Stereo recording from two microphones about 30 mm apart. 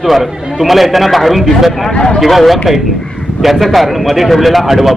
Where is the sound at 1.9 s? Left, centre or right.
Left.